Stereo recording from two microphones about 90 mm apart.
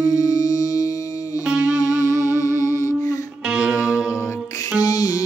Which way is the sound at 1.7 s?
40° left (ahead or behind).